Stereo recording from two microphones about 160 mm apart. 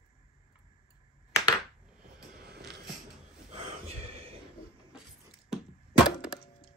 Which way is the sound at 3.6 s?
40° right (ahead or behind).